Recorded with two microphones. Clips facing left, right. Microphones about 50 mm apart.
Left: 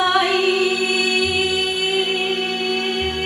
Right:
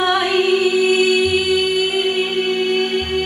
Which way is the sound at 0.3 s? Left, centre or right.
Right.